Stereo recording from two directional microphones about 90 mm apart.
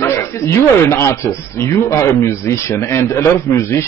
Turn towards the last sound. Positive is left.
turn(degrees=30)  # may be behind; listen again after turning